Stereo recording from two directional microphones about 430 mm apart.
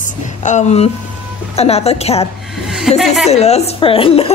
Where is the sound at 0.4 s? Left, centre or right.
Centre.